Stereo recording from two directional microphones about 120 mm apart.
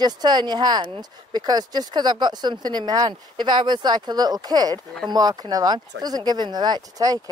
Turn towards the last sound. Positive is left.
turn(degrees=-30)  # may be behind; listen again after turning